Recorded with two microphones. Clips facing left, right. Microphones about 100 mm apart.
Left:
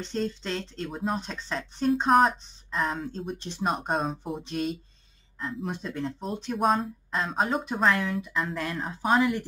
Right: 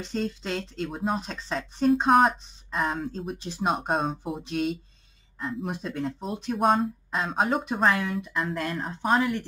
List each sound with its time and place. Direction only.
0.0 s speech: 5° right (ahead or behind)
5.9 s a woman's voice: 5° right (ahead or behind)